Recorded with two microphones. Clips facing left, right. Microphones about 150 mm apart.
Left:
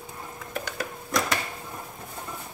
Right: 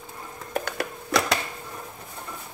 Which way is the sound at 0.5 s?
65° right (ahead or behind).